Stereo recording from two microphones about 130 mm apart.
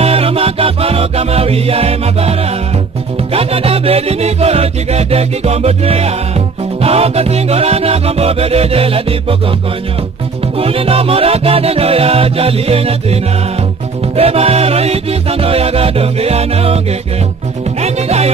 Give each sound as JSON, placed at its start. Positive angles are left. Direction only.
{"t": 0.0, "sound": "music", "side_deg": -50}
{"t": 3.3, "sound": "music", "side_deg": -50}
{"t": 10.6, "sound": "music", "side_deg": -50}
{"t": 17.8, "sound": "music", "side_deg": -55}